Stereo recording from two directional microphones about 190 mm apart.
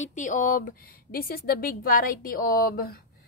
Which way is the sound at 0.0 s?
40° left (ahead or behind).